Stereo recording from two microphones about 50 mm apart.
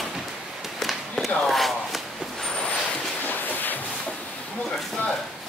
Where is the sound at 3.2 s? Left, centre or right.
Left.